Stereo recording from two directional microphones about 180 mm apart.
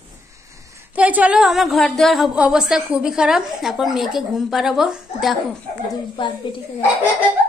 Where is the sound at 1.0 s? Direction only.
10° right (ahead or behind).